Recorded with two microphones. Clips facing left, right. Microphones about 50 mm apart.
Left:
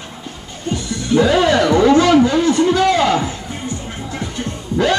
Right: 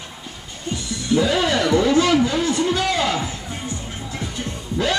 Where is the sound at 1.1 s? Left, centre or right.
Left.